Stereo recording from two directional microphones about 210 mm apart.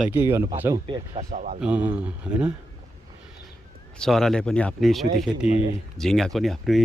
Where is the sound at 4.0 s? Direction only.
Centre (ahead or behind).